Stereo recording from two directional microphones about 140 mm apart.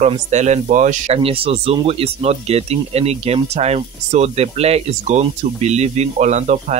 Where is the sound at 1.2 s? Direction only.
40° right (ahead or behind).